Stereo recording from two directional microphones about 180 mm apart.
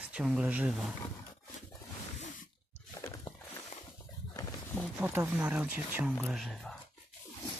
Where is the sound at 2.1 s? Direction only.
40° left (ahead or behind).